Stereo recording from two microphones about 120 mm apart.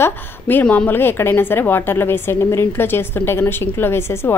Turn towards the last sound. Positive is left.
turn(degrees=20)  # may be behind; listen again after turning